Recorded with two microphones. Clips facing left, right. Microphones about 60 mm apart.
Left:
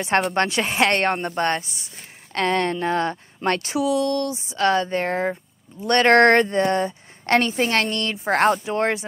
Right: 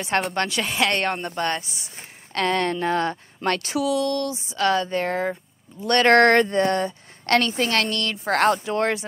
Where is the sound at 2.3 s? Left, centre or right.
Left.